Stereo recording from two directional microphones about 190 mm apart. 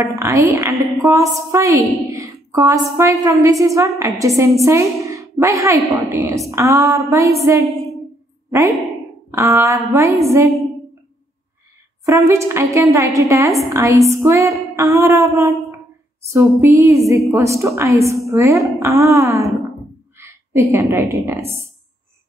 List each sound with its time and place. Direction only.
0.0 s a woman's voice: 15° right (ahead or behind)
9.3 s a woman's voice: 15° right (ahead or behind)
12.0 s a woman's voice: 15° right (ahead or behind)